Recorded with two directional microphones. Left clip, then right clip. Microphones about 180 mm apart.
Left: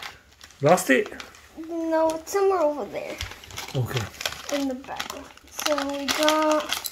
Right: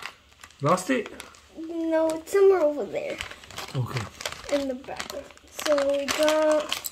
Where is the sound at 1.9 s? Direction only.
55° right (ahead or behind).